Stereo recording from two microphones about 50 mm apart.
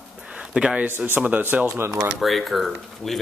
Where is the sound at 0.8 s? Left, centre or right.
Right.